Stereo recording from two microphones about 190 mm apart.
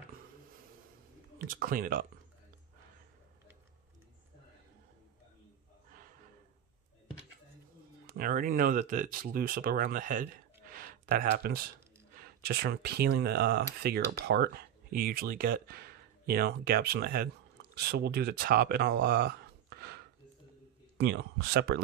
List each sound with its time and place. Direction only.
1.5 s speech: 50° right (ahead or behind)
8.1 s speech: 50° right (ahead or behind)